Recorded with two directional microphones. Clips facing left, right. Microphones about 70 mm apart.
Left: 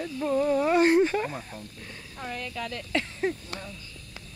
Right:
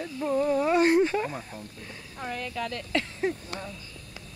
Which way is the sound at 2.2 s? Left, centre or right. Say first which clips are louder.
Right 2 dB; centre.